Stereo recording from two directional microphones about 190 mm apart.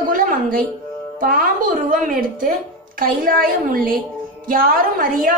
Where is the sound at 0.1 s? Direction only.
45° right (ahead or behind).